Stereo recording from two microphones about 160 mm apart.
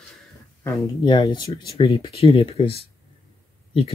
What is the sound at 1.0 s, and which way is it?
Speech, 30° left (ahead or behind).